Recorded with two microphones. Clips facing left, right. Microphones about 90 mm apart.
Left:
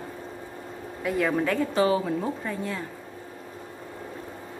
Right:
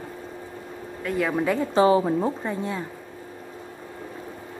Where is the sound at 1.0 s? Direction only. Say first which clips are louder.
Right 1 dB; centre (ahead or behind).